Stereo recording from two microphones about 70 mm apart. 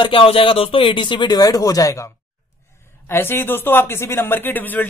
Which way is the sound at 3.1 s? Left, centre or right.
Left.